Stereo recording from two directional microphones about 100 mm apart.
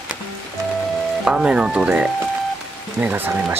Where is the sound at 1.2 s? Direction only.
10° right (ahead or behind).